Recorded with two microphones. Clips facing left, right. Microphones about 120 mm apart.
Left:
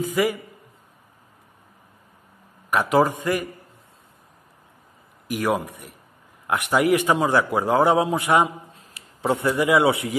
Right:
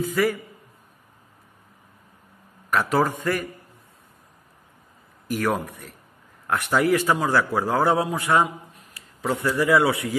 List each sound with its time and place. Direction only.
0.0 s a man's voice: 15° left (ahead or behind)
2.7 s a man's voice: 15° left (ahead or behind)
5.3 s a man's voice: 15° left (ahead or behind)